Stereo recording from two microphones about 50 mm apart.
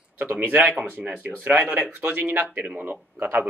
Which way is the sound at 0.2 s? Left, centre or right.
Right.